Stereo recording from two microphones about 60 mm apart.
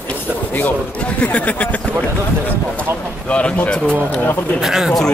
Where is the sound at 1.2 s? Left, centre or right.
Left.